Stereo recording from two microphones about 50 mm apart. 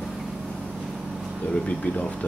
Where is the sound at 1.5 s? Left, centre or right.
Left.